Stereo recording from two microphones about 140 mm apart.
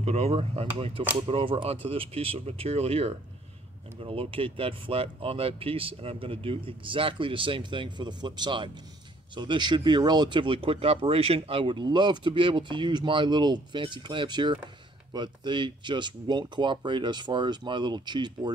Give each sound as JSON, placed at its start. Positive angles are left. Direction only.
{"t": 0.0, "sound": "speech", "side_deg": -50}